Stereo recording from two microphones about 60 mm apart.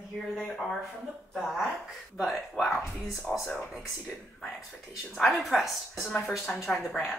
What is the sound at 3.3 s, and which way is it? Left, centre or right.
Speech, left.